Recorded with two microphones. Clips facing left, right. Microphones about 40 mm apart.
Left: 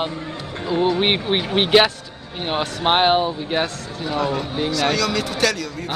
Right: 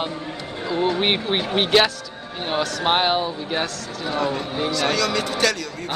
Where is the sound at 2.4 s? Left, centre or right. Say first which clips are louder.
Left 1 dB; left.